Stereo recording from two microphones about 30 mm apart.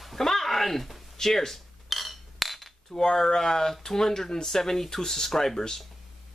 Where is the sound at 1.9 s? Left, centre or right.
Centre.